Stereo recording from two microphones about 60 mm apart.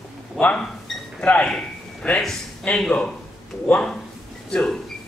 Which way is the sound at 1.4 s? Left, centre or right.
Centre.